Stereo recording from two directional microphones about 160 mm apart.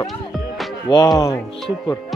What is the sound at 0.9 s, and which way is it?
Speech, 25° left (ahead or behind).